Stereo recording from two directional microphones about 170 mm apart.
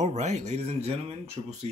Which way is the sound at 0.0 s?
40° right (ahead or behind).